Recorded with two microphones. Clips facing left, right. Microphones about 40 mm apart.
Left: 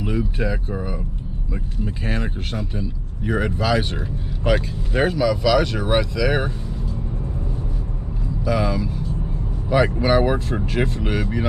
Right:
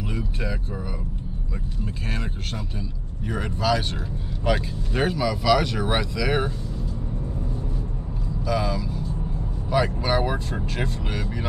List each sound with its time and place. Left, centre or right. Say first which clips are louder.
0.0 s speech: left 7 dB; centre
1.9 s a man's voice: left 6 dB; centre
8.5 s a man's voice: left 4 dB; centre